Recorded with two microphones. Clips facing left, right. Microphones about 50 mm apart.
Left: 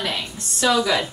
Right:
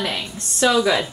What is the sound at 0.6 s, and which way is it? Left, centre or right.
Speech, right.